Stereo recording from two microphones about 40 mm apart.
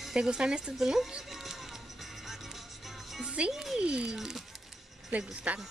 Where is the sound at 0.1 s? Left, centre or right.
Centre.